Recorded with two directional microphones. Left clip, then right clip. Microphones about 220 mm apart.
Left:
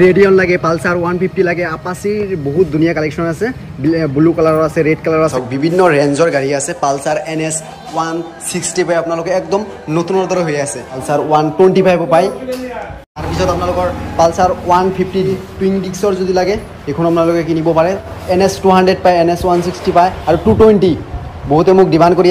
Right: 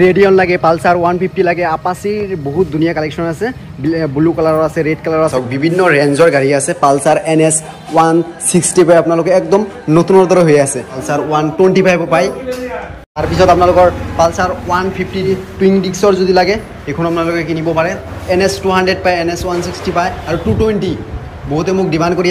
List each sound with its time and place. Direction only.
0.0 s a man's voice: 5° right (ahead or behind)
5.3 s speech: 15° left (ahead or behind); by 7.5 s centre (ahead or behind)
7.9 s a man's voice: 25° right (ahead or behind)
8.5 s a man's voice: 5° right (ahead or behind)
10.7 s speech: 10° left (ahead or behind)
13.4 s a man's voice: 5° left (ahead or behind)
17.4 s a man's voice: 50° left (ahead or behind)
17.6 s speech: 15° left (ahead or behind)
18.3 s a man's voice: 50° left (ahead or behind)
18.7 s speech: 20° left (ahead or behind)